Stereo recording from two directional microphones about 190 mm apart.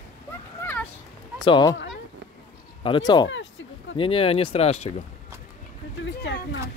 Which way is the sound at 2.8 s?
25° left (ahead or behind).